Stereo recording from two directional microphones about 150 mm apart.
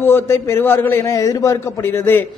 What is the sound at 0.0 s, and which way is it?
A man's voice, 15° left (ahead or behind).